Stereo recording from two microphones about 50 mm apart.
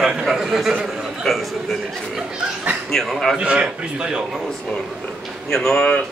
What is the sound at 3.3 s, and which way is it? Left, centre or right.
Speech, right.